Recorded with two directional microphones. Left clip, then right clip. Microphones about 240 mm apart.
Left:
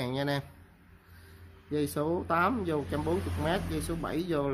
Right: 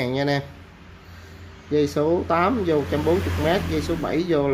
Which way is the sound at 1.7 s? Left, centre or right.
Centre.